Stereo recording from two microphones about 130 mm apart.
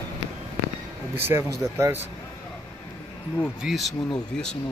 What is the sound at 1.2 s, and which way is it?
Speech, 20° right (ahead or behind).